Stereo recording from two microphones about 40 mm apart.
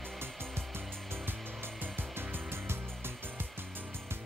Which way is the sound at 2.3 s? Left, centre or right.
Right.